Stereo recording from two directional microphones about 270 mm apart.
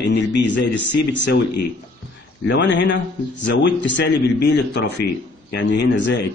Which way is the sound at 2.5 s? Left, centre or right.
Left.